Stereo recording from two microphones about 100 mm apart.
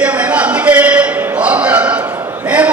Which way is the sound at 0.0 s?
15° right (ahead or behind).